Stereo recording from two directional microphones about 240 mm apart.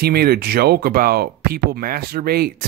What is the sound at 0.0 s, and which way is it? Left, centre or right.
Speech, right.